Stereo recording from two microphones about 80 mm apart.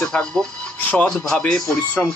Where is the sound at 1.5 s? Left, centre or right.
Centre.